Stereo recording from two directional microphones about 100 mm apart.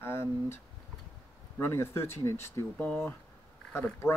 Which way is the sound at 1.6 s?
25° left (ahead or behind).